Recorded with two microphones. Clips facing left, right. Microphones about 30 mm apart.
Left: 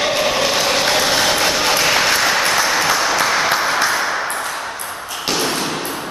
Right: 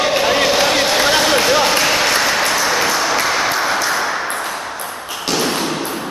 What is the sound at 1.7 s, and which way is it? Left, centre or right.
Applause, centre.